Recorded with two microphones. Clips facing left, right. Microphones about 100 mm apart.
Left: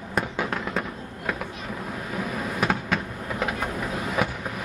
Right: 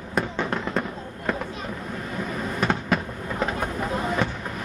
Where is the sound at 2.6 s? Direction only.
5° left (ahead or behind).